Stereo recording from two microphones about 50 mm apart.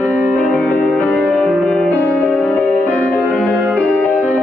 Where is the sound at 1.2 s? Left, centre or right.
Centre.